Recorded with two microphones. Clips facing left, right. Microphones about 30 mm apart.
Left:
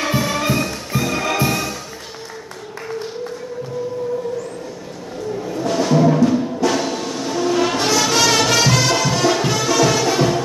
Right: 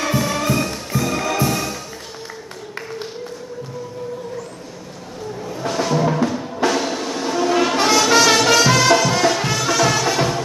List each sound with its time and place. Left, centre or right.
0.0 s music: centre
5.7 s music: centre